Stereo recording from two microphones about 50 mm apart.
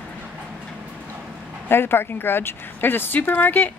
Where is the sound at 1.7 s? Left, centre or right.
Left.